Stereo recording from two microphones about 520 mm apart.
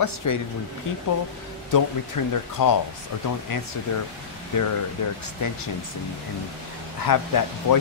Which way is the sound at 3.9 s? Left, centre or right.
Left.